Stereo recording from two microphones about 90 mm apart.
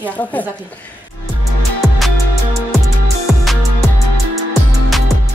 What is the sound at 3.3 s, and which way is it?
Music, 5° right (ahead or behind).